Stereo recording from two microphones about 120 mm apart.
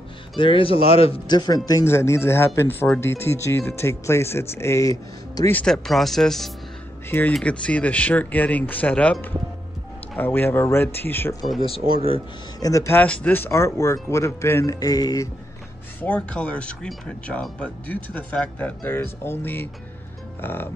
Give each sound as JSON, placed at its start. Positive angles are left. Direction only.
{"t": 0.4, "sound": "speech", "side_deg": 45}
{"t": 1.2, "sound": "speech", "side_deg": 35}
{"t": 1.7, "sound": "speech", "side_deg": 25}
{"t": 5.5, "sound": "speech", "side_deg": 10}
{"t": 5.9, "sound": "speech", "side_deg": 0}
{"t": 7.1, "sound": "speech", "side_deg": 15}
{"t": 11.6, "sound": "speech", "side_deg": 50}
{"t": 12.5, "sound": "speech", "side_deg": 30}
{"t": 13.0, "sound": "speech", "side_deg": 10}
{"t": 16.0, "sound": "speech", "side_deg": 10}